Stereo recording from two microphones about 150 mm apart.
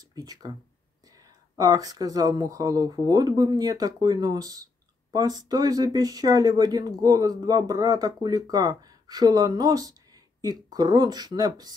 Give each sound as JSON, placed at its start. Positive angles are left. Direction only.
{"t": 0.1, "sound": "speech", "side_deg": -25}
{"t": 1.6, "sound": "speech", "side_deg": -25}